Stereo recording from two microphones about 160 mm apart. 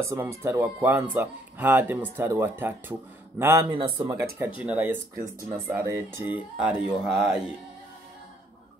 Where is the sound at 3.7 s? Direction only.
30° right (ahead or behind); by 7.5 s 5° right (ahead or behind).